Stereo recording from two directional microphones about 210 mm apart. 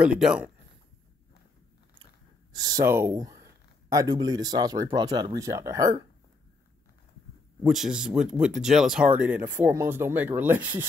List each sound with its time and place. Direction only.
0.0 s speech: 5° right (ahead or behind)
2.6 s speech: 15° right (ahead or behind)
7.6 s speech: centre (ahead or behind)